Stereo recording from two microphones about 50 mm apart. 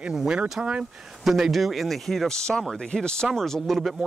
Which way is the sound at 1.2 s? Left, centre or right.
Centre.